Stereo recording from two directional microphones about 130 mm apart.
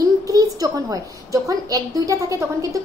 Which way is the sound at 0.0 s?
25° right (ahead or behind).